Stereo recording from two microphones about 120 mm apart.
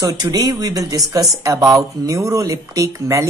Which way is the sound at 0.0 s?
30° right (ahead or behind).